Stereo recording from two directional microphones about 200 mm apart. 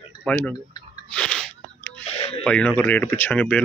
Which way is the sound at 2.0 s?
30° left (ahead or behind).